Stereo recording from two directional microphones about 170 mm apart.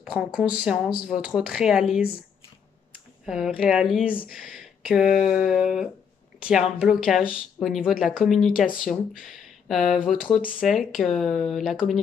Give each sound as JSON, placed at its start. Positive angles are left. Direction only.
{"t": 0.0, "sound": "speech", "side_deg": -5}
{"t": 8.5, "sound": "speech", "side_deg": 55}
{"t": 9.7, "sound": "speech", "side_deg": 0}